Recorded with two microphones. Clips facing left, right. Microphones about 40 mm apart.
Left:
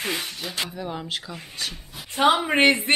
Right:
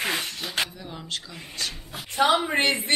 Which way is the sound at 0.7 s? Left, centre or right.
Centre.